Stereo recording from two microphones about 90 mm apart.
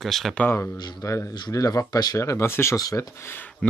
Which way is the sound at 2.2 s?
30° left (ahead or behind).